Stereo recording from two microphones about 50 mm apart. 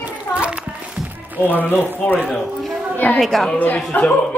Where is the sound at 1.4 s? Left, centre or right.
Left.